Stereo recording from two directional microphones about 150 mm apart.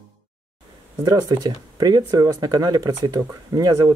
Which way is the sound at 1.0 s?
25° right (ahead or behind).